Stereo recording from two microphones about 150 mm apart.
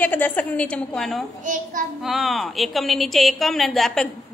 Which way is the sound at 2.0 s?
Centre (ahead or behind).